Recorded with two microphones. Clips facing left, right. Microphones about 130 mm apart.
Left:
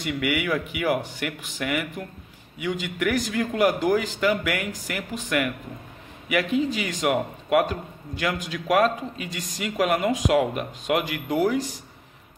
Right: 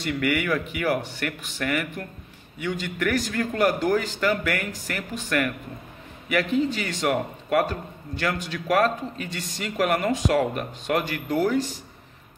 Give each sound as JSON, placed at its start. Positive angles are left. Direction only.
{"t": 0.1, "sound": "a man's voice", "side_deg": 10}